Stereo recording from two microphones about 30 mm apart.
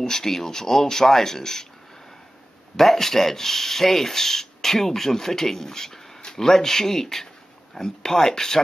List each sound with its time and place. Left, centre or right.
0.0 s speech: centre
2.7 s speech: centre